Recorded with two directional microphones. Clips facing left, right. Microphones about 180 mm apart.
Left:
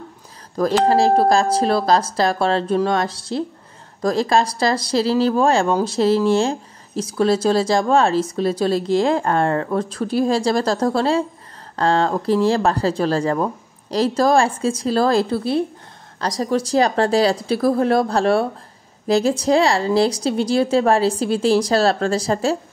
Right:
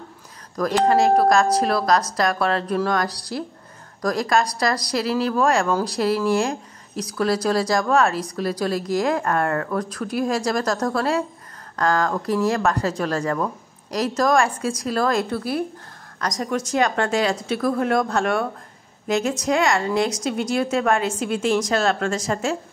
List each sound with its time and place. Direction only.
0.8 s a woman's voice: 30° left (ahead or behind)